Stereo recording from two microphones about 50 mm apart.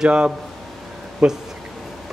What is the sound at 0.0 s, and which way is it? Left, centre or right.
A man's voice, centre.